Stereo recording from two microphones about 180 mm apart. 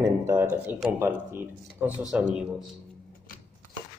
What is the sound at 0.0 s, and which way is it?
A man's voice, 15° right (ahead or behind).